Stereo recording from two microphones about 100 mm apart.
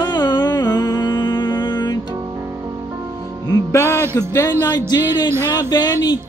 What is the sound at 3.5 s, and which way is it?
Speech, 35° left (ahead or behind).